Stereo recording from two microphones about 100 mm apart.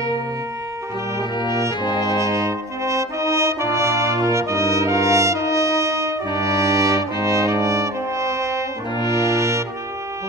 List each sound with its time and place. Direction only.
1.4 s brass instrument: 45° left (ahead or behind)
2.1 s brass instrument: 30° right (ahead or behind)